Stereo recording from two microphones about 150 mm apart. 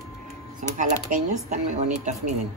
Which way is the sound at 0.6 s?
60° right (ahead or behind).